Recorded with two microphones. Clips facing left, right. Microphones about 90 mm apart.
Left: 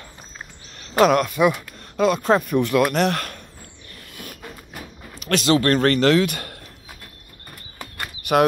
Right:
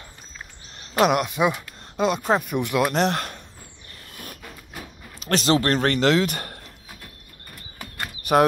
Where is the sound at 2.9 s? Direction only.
30° right (ahead or behind).